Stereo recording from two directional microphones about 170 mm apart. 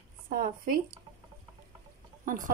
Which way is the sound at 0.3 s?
55° right (ahead or behind).